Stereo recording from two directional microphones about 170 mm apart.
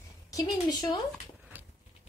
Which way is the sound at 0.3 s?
20° left (ahead or behind).